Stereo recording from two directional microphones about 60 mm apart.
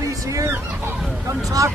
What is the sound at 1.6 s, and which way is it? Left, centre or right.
Speech, right.